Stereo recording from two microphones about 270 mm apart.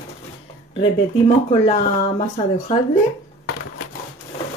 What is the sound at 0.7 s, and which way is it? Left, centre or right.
Speech, left.